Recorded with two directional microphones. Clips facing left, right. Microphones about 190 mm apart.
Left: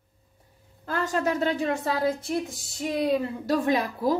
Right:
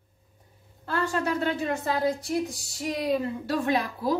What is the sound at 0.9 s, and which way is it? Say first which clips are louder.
Speech: left 1 dB; 40° left (ahead or behind).